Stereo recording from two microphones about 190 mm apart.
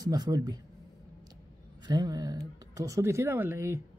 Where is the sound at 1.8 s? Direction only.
20° right (ahead or behind).